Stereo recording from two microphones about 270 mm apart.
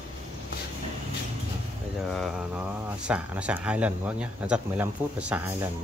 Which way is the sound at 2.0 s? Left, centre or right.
Centre.